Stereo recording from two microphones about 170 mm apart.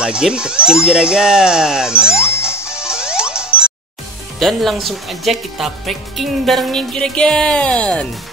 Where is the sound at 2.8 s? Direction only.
5° right (ahead or behind).